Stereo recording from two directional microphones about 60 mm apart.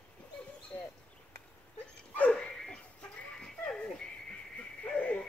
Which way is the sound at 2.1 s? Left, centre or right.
Left.